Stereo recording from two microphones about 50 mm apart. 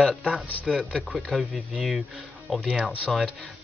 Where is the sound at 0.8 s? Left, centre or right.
Centre.